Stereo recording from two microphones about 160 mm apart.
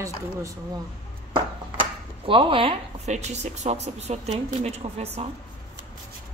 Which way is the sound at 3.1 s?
45° right (ahead or behind).